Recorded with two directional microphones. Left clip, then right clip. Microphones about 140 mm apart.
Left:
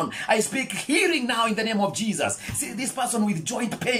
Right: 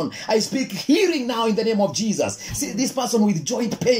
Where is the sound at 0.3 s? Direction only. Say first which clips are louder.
Right 2 dB; 45° right (ahead or behind).